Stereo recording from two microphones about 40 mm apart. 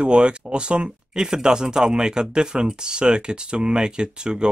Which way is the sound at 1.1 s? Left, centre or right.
Centre.